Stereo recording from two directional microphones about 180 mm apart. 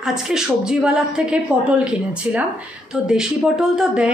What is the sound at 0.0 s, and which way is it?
A woman's voice, 5° right (ahead or behind).